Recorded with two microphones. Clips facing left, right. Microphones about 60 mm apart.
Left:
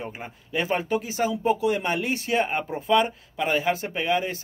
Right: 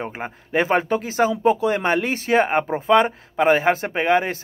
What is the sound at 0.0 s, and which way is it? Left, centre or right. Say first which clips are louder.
Speech: right 6 dB; right.